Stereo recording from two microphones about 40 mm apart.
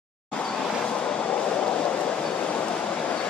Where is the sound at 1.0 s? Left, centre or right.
Left.